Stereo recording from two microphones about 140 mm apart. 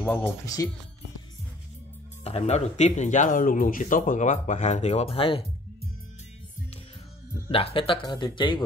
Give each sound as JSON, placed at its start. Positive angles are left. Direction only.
{"t": 0.0, "sound": "speech", "side_deg": 15}
{"t": 2.2, "sound": "speech", "side_deg": 50}
{"t": 7.5, "sound": "speech", "side_deg": 40}